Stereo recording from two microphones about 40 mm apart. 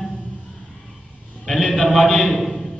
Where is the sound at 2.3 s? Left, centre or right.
Centre.